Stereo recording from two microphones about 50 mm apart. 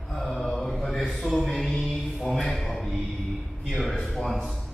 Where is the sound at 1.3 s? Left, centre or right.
Centre.